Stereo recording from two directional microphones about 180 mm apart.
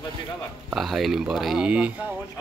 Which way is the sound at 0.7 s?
Centre (ahead or behind).